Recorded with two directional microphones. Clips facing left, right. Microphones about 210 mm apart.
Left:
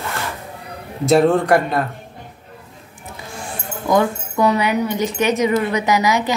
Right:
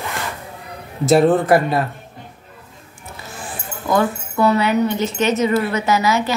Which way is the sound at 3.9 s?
15° left (ahead or behind).